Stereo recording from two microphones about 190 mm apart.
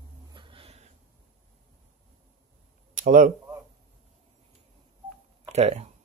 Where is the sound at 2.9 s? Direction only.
45° right (ahead or behind).